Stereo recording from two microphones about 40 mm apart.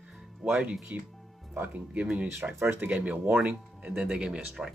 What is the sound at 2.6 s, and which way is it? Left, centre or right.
Speech, right.